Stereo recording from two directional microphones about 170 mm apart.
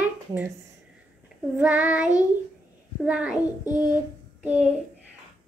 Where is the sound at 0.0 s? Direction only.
10° right (ahead or behind).